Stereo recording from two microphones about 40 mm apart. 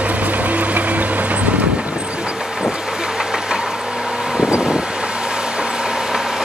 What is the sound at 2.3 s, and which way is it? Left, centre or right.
Vehicle, centre.